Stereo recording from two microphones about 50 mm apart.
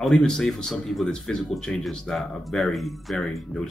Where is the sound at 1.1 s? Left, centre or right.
Centre.